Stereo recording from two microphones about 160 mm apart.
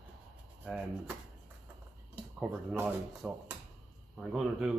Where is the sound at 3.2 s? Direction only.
5° right (ahead or behind).